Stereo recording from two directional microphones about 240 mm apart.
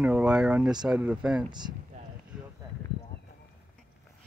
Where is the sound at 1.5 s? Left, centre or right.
Centre.